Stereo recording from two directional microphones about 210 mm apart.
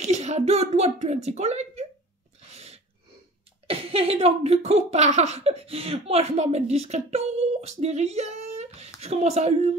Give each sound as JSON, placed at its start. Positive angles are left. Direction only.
{"t": 0.0, "sound": "speech", "side_deg": -30}
{"t": 2.5, "sound": "a sound", "side_deg": -30}
{"t": 3.6, "sound": "speech", "side_deg": -25}